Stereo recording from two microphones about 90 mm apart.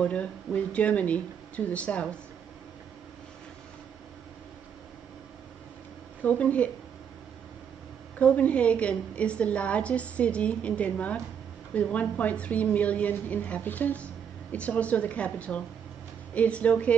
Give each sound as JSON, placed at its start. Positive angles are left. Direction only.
{"t": 0.0, "sound": "a woman's voice", "side_deg": 15}
{"t": 6.2, "sound": "a woman's voice", "side_deg": 15}
{"t": 8.2, "sound": "a woman's voice", "side_deg": 15}